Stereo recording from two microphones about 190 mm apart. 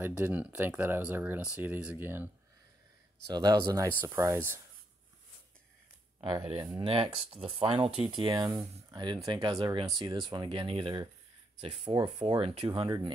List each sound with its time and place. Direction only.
0.0 s speech: 10° right (ahead or behind)
3.3 s speech: 20° right (ahead or behind)
6.2 s speech: 25° right (ahead or behind)